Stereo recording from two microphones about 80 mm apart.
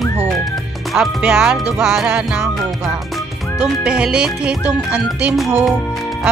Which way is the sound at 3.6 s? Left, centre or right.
Centre.